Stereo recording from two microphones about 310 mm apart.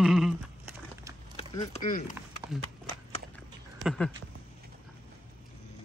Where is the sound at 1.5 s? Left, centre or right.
Left.